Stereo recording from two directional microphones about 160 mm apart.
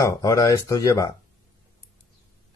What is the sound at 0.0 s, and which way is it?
Speech, 20° left (ahead or behind).